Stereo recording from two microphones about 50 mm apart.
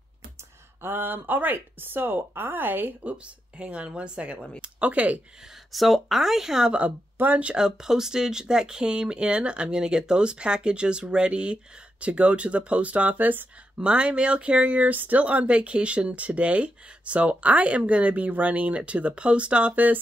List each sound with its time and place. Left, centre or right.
0.8 s speech: right
5.7 s speech: centre
7.2 s speech: right
7.5 s speech: centre; by 13.5 s right
13.7 s speech: right